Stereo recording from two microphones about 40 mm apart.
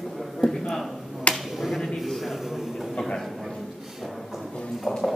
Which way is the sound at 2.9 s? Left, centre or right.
Centre.